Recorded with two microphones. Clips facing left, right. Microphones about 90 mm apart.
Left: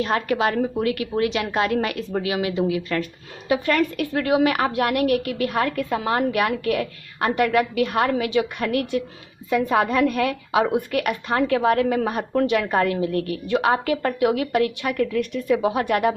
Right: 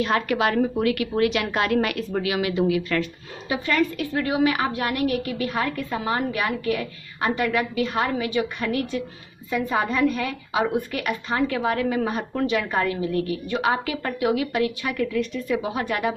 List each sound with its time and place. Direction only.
0.0 s a woman's voice: 35° left (ahead or behind)
3.0 s speech: 50° left (ahead or behind)
9.5 s a woman's voice: 70° left (ahead or behind)
10.9 s speech: 60° left (ahead or behind)